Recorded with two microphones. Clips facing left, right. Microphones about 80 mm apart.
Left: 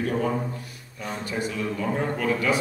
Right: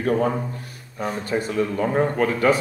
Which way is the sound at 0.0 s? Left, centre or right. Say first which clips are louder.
Right 4 dB; right.